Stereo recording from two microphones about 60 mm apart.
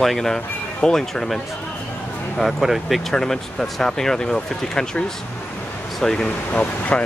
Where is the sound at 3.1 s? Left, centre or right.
Centre.